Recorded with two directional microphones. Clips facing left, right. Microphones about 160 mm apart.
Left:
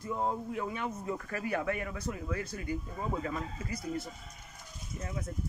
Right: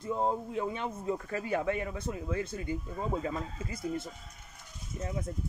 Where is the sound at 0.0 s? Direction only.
25° right (ahead or behind).